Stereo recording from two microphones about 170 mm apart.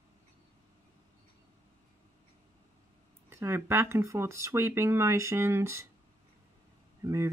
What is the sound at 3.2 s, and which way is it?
Speech, 15° right (ahead or behind).